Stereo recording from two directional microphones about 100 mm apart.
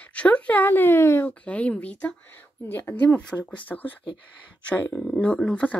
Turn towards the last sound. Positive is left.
turn(degrees=10)  # may be behind; listen again after turning